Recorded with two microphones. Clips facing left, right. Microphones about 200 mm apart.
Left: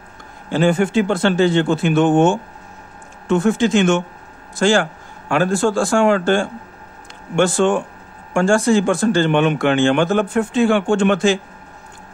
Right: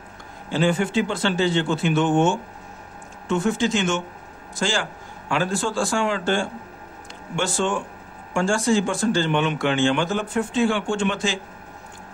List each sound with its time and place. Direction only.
0.5 s speech: 50° left (ahead or behind)